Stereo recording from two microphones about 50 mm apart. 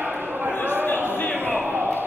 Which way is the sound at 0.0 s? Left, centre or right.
Right.